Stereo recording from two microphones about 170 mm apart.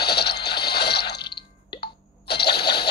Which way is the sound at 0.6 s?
70° left (ahead or behind).